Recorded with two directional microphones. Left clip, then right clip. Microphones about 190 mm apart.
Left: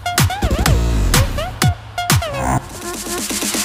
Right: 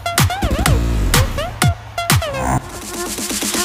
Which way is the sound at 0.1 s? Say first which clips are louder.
Even; centre (ahead or behind).